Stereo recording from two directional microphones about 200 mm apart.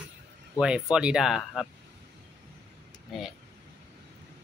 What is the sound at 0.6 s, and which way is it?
Speech, 5° right (ahead or behind).